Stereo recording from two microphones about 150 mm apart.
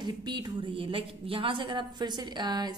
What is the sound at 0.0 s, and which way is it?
A woman's voice, 30° right (ahead or behind).